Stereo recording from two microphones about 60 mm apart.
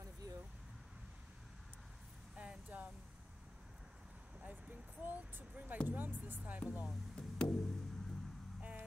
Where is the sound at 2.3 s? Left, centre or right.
Centre.